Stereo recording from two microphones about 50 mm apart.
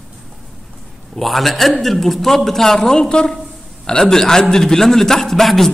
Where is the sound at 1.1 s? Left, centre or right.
Centre.